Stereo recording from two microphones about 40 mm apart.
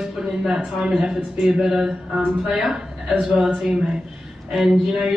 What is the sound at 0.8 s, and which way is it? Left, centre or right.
Speech, centre.